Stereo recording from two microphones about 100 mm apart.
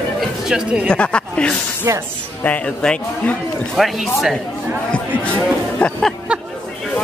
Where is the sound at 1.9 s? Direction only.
30° right (ahead or behind).